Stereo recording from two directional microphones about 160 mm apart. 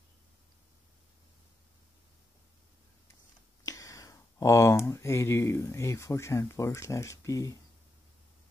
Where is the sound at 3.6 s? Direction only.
20° left (ahead or behind).